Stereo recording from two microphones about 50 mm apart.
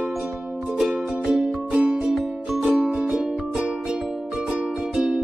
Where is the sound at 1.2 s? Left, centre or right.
Centre.